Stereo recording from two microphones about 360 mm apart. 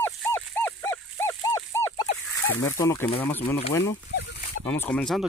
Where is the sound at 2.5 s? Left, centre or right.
Centre.